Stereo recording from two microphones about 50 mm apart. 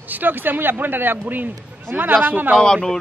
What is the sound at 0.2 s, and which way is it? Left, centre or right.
Speech, right.